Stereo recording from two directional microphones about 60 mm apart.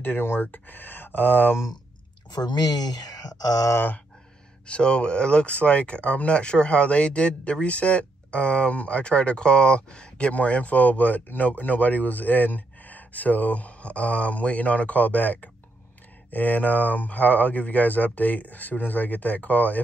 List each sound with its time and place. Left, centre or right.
0.0 s speech: left
2.3 s speech: left
4.6 s speech: centre